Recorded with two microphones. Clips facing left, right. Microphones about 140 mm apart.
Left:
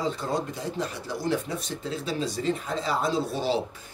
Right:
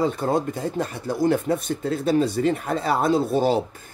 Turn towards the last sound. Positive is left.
turn(degrees=-50)  # may be behind; listen again after turning